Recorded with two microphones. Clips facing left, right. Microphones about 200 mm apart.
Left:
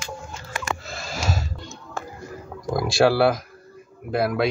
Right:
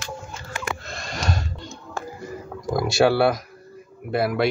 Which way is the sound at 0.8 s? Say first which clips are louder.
Even; 5° left (ahead or behind).